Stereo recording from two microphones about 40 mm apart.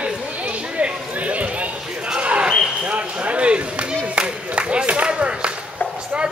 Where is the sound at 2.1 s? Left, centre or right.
Right.